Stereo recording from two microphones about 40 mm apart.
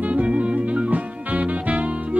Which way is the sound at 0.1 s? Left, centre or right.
Right.